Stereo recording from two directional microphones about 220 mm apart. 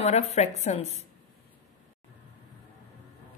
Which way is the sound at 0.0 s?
30° left (ahead or behind).